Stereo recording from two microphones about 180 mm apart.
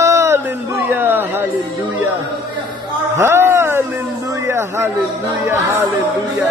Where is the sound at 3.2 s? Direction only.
15° right (ahead or behind).